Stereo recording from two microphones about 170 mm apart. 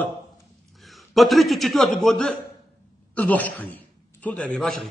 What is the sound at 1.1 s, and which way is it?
A man's voice, centre (ahead or behind).